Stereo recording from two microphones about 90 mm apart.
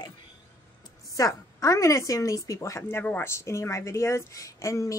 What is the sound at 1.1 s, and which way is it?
Speech, 40° left (ahead or behind).